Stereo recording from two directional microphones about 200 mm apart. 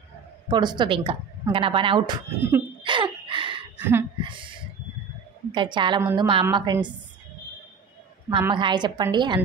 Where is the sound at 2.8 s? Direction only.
25° right (ahead or behind).